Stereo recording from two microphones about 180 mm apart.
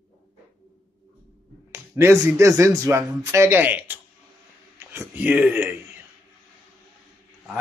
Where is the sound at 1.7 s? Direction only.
15° right (ahead or behind).